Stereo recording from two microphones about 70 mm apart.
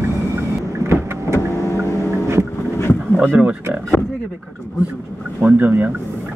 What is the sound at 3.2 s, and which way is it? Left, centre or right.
Speech, right.